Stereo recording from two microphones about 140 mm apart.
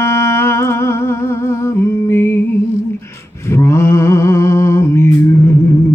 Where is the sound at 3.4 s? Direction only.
20° left (ahead or behind).